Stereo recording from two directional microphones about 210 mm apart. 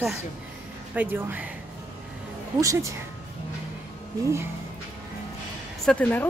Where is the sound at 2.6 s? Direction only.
15° right (ahead or behind).